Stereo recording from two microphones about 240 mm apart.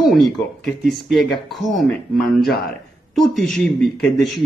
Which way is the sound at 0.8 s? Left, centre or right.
Centre.